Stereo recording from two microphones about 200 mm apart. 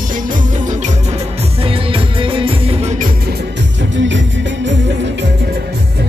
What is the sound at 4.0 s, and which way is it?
Music, 65° right (ahead or behind).